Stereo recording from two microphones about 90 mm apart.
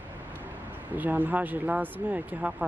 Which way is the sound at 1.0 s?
20° right (ahead or behind).